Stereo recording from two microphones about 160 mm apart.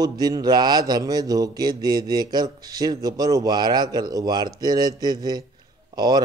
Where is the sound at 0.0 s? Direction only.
25° right (ahead or behind).